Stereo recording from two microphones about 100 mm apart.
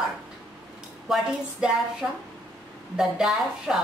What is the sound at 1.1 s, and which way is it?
Speech, 5° right (ahead or behind).